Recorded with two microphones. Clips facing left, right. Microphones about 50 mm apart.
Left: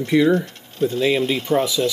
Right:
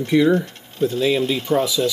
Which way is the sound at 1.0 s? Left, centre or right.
Left.